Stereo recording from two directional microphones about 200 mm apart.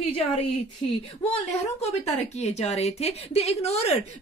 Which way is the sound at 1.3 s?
35° left (ahead or behind).